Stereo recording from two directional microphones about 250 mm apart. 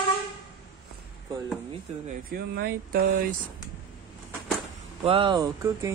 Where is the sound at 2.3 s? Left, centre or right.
Right.